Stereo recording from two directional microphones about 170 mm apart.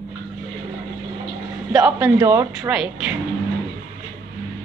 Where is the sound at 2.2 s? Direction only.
15° right (ahead or behind).